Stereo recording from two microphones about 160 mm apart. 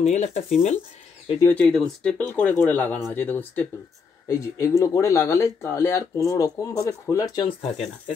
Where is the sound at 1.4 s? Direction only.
5° left (ahead or behind); by 7.6 s 25° left (ahead or behind).